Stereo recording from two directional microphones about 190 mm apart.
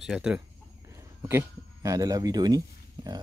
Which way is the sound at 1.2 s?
15° right (ahead or behind).